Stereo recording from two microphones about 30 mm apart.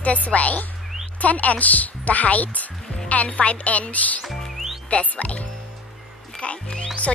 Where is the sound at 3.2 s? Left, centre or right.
Left.